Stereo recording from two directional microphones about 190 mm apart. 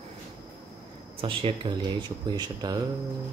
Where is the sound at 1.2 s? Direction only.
25° right (ahead or behind).